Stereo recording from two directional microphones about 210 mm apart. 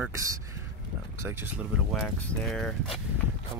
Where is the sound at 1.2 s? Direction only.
10° right (ahead or behind).